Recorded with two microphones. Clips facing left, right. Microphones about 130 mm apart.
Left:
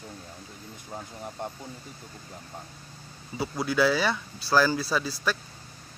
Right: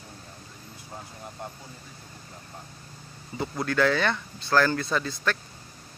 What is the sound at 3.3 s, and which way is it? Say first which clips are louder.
Speech: even; 10° left (ahead or behind).